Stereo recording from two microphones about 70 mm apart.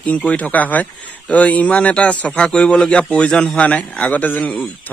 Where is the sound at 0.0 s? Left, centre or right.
Centre.